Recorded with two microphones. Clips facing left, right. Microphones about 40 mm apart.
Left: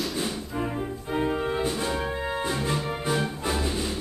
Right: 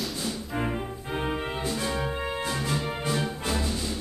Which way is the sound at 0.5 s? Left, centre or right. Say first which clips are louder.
Left 1 dB; right.